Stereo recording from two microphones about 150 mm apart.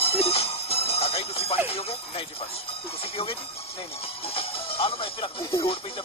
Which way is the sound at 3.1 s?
40° left (ahead or behind).